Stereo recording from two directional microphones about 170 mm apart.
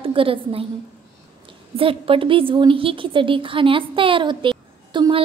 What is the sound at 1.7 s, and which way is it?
A woman's voice, 30° right (ahead or behind).